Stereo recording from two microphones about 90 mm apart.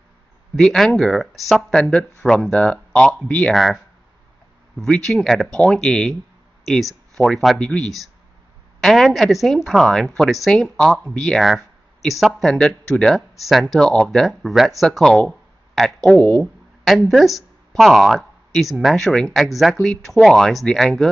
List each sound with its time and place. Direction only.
0.6 s speech: 5° left (ahead or behind)
3.5 s speech: centre (ahead or behind)
16.1 s speech: 20° left (ahead or behind)
17.1 s speech: centre (ahead or behind)